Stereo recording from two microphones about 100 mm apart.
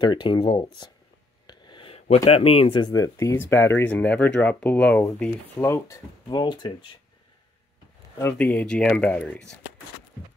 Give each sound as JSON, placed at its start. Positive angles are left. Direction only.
{"t": 0.0, "sound": "speech", "side_deg": 50}
{"t": 1.5, "sound": "a sound", "side_deg": 50}
{"t": 1.9, "sound": "a man's voice", "side_deg": 85}
{"t": 2.8, "sound": "speech", "side_deg": 35}
{"t": 3.3, "sound": "speech", "side_deg": 25}
{"t": 5.6, "sound": "speech", "side_deg": 30}
{"t": 6.4, "sound": "speech", "side_deg": 50}
{"t": 8.4, "sound": "speech", "side_deg": 15}